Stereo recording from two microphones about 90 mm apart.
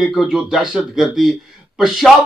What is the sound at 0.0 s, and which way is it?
A man's voice, centre (ahead or behind).